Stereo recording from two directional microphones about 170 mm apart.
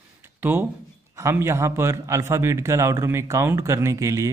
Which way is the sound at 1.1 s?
15° right (ahead or behind).